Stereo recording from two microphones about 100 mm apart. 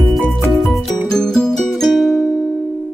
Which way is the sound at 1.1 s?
5° left (ahead or behind).